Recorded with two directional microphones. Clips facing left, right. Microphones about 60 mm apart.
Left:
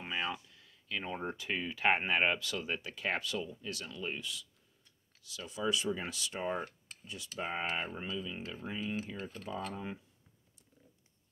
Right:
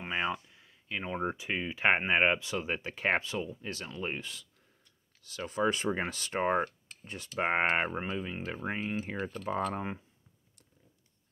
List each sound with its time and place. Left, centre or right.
0.1 s speech: right